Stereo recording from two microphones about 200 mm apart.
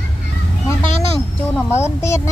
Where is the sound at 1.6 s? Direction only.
15° left (ahead or behind).